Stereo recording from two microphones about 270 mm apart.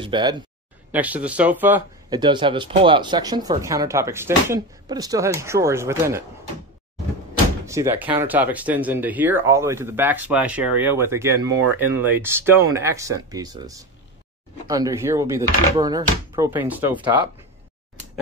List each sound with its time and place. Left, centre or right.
0.0 s speech: centre
0.9 s speech: centre
7.6 s speech: centre